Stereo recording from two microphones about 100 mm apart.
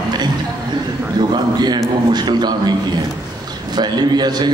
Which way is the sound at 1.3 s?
45° right (ahead or behind).